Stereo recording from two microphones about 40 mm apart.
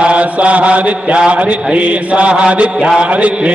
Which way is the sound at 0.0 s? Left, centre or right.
Right.